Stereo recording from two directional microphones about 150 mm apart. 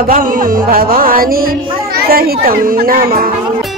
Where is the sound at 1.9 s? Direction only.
85° right.